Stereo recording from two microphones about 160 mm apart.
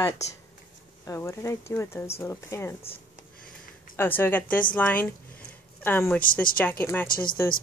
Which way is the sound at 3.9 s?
15° left (ahead or behind).